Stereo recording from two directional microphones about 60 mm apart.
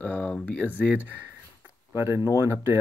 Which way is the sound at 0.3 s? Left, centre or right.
Left.